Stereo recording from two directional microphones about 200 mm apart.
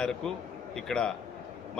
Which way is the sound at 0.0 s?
5° left (ahead or behind).